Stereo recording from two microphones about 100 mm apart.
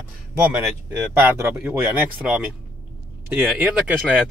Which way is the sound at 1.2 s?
20° right (ahead or behind).